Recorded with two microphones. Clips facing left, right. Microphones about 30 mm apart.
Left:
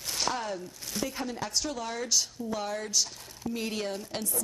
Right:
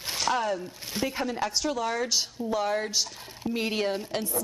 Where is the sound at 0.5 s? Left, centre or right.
Right.